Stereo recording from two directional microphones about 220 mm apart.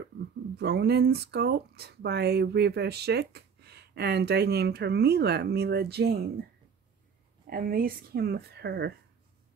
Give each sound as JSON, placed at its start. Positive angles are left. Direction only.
{"t": 0.6, "sound": "speech", "side_deg": -50}
{"t": 7.4, "sound": "speech", "side_deg": -40}